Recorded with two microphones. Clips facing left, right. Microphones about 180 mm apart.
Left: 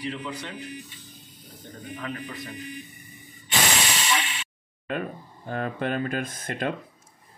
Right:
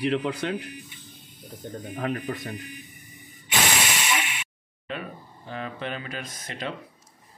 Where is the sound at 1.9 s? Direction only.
55° right (ahead or behind).